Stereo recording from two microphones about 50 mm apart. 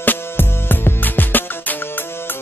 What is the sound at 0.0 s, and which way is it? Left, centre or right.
Music, left.